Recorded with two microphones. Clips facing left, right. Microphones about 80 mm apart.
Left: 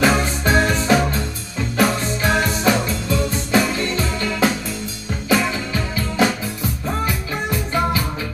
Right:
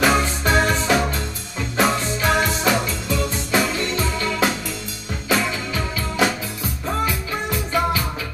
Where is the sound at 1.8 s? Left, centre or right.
Right.